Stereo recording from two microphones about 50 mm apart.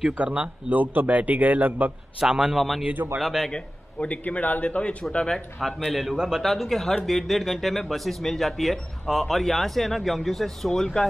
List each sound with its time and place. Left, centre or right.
0.2 s a man's voice: right
2.1 s a man's voice: centre
2.5 s speech: centre
3.4 s a man's voice: centre
4.1 s a man's voice: left
5.6 s speech: centre
6.1 s a man's voice: centre
6.4 s speech: centre